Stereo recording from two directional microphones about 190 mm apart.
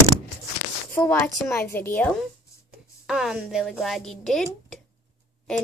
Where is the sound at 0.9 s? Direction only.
10° left (ahead or behind).